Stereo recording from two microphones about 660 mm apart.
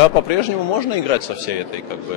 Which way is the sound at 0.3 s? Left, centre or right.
Left.